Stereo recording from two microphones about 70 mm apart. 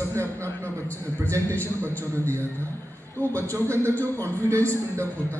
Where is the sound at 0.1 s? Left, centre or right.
Right.